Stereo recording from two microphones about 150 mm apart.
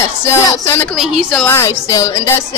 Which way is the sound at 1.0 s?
Centre (ahead or behind).